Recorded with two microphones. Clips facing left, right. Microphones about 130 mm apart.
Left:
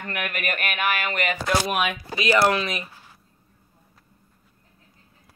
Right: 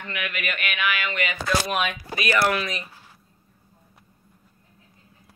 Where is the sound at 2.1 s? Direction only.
25° left (ahead or behind).